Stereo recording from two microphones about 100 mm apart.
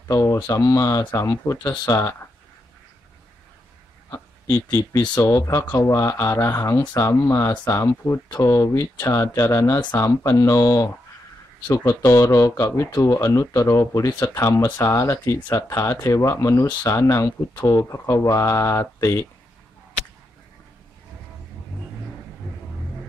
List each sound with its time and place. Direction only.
0.1 s speech: 30° left (ahead or behind)
4.1 s speech: 30° left (ahead or behind)
8.4 s speech: 35° left (ahead or behind)